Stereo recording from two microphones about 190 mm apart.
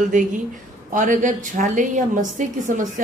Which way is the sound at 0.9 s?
40° right (ahead or behind).